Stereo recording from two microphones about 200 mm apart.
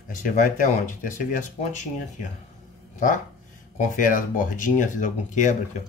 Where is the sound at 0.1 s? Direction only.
40° left (ahead or behind).